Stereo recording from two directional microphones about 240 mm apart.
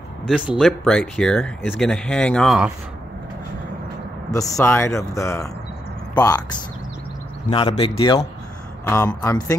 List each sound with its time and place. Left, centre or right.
0.3 s speech: centre
4.3 s speech: centre
7.4 s speech: left
8.8 s speech: centre